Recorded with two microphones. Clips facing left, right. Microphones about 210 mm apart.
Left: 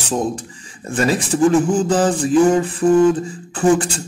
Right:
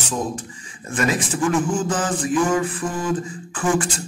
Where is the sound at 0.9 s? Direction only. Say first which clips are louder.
Left 5 dB; 35° left (ahead or behind).